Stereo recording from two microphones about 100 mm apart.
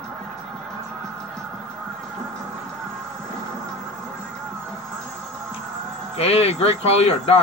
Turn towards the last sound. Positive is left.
turn(degrees=90)